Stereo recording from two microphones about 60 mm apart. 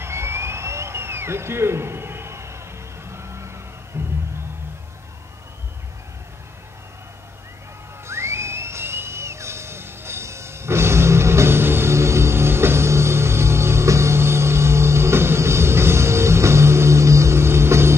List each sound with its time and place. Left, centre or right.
0.0 s a sound: right
3.9 s music: right
8.1 s music: right